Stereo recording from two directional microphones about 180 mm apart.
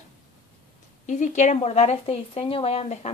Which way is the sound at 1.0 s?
40° left (ahead or behind).